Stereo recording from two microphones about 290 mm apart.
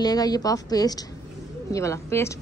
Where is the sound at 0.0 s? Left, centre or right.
Centre.